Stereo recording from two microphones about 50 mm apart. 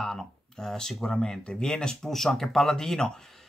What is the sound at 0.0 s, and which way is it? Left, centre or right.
Speech, centre.